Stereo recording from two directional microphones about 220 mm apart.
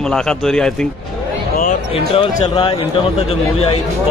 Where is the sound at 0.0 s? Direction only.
Centre (ahead or behind).